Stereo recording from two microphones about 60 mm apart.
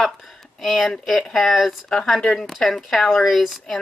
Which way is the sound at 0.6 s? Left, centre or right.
Centre.